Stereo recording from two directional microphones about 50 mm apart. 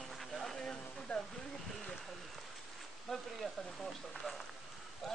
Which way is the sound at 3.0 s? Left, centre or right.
Centre.